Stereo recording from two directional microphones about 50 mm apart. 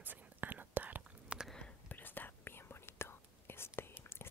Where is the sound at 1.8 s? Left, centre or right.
Left.